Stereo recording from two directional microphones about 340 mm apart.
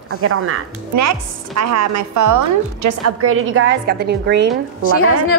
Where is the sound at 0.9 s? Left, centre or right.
Right.